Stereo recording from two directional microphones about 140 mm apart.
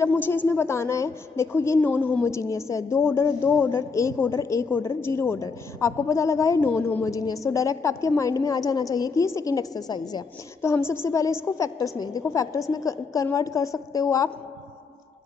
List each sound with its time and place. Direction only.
0.0 s a woman's voice: 15° left (ahead or behind)